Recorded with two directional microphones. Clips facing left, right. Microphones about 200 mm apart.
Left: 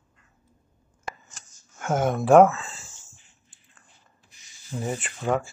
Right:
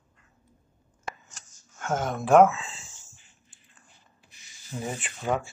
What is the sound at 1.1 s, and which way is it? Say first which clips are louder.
Scissors: left 1 dB; centre (ahead or behind).